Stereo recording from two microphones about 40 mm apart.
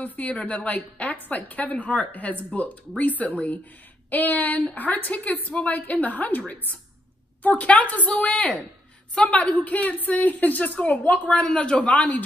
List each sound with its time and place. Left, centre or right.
0.0 s a woman's voice: left
8.3 s speech: centre
9.1 s a woman's voice: left
11.3 s a man's voice: left
11.8 s a woman's voice: left